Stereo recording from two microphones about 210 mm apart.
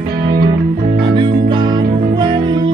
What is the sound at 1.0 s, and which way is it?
Music, 20° right (ahead or behind).